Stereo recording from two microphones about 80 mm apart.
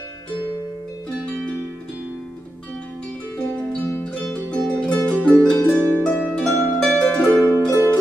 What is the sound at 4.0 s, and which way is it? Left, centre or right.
Music, centre.